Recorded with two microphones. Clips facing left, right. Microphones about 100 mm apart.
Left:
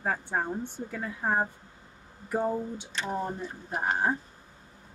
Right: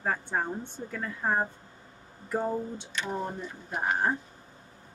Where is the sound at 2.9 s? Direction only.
35° left (ahead or behind).